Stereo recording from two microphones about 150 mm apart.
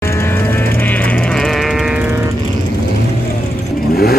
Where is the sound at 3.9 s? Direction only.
90° left.